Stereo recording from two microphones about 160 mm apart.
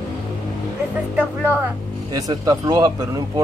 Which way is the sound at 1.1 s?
10° right (ahead or behind).